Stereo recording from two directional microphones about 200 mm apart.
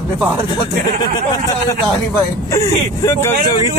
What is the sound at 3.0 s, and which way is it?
Speech, 15° left (ahead or behind).